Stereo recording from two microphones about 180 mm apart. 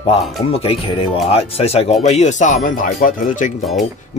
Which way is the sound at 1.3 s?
35° left (ahead or behind).